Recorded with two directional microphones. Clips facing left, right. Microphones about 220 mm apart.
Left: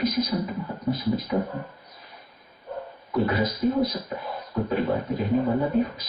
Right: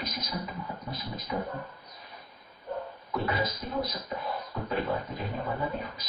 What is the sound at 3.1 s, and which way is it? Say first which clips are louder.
Speech: left 7 dB; centre (ahead or behind).